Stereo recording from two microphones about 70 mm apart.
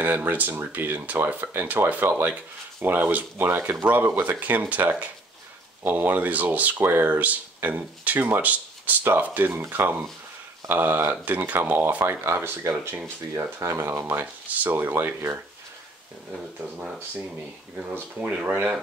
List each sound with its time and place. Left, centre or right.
0.0 s speech: right
5.9 s speech: right
13.6 s speech: right
14.2 s speech: right
17.7 s speech: right